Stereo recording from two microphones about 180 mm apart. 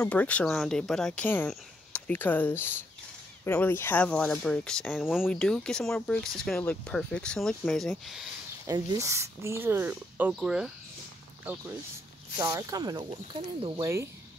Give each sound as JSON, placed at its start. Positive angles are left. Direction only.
{"t": 0.0, "sound": "speech", "side_deg": 5}
{"t": 8.6, "sound": "speech", "side_deg": -20}
{"t": 12.4, "sound": "speech", "side_deg": -20}